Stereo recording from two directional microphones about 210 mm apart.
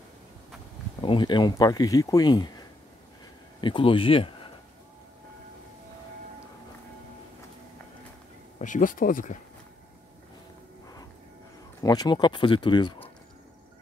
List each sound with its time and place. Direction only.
1.0 s speech: 20° left (ahead or behind)
3.6 s speech: 25° left (ahead or behind)
8.5 s speech: 35° left (ahead or behind)
11.8 s speech: 20° left (ahead or behind)